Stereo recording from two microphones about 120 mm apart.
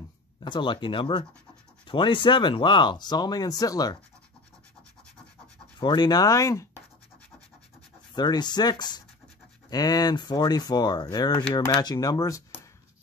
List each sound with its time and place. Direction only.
0.4 s speech: 40° left (ahead or behind)
5.8 s speech: 40° left (ahead or behind)
8.1 s speech: 35° left (ahead or behind)